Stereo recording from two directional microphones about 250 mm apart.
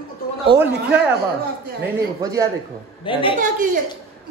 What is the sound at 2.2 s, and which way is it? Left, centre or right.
Speech, centre.